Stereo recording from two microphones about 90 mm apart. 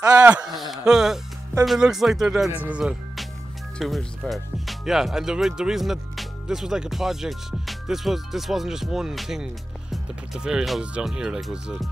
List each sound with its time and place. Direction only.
0.2 s speech: 15° right (ahead or behind)
0.5 s speech: centre (ahead or behind)
2.5 s speech: 15° right (ahead or behind)
2.8 s music: 5° right (ahead or behind)
3.8 s speech: centre (ahead or behind)